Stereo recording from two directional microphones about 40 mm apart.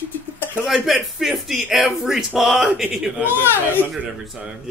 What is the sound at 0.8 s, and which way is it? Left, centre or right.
Speech, centre.